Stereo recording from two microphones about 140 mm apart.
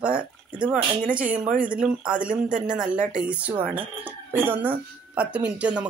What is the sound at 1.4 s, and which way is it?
A woman's voice, 10° right (ahead or behind).